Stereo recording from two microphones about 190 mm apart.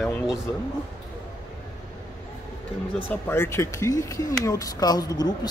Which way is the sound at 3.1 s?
10° left (ahead or behind).